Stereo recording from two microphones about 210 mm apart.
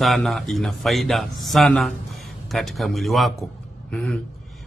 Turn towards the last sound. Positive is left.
turn(degrees=5)  # may be behind; listen again after turning